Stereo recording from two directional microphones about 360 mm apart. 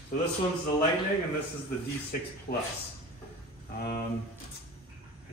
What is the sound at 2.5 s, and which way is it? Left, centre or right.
Speech, left.